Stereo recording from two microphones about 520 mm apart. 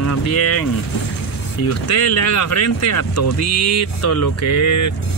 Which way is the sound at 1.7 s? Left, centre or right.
Left.